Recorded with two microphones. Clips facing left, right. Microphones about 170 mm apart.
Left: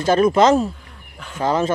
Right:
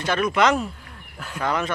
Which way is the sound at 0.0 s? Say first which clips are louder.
Left 6 dB; 35° left (ahead or behind).